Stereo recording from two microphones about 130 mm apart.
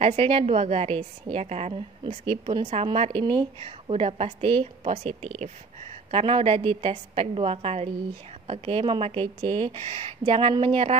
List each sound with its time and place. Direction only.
0.0 s a woman's voice: 50° right (ahead or behind)